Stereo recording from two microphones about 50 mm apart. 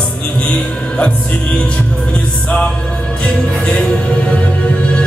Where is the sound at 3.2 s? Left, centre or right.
Centre.